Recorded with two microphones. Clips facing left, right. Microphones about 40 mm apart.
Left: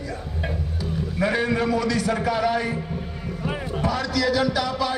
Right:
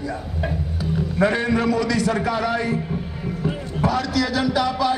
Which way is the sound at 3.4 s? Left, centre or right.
Left.